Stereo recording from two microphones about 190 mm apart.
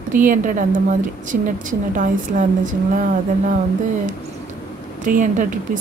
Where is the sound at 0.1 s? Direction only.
45° right (ahead or behind).